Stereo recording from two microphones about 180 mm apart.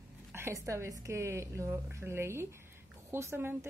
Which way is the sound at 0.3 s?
15° right (ahead or behind).